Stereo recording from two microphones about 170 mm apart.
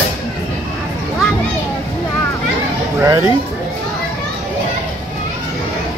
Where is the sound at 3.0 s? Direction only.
15° right (ahead or behind).